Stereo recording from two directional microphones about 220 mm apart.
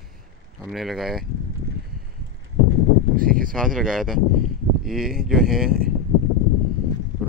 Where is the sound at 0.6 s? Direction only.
Centre (ahead or behind).